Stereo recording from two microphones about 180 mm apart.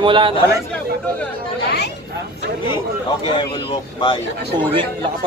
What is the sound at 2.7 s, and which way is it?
Speech, 25° left (ahead or behind).